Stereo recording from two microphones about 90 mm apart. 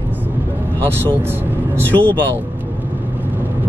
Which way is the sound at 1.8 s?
20° left (ahead or behind).